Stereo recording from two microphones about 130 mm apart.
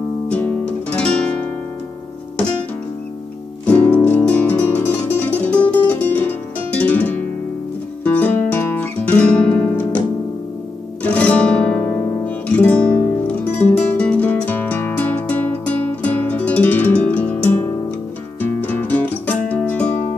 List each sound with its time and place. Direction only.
0.3 s music: 10° left (ahead or behind)
3.6 s music: 10° left (ahead or behind)
11.0 s guitar: 10° left (ahead or behind)
12.5 s music: 10° left (ahead or behind)